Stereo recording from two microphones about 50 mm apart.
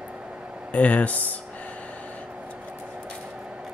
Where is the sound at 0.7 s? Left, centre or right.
Left.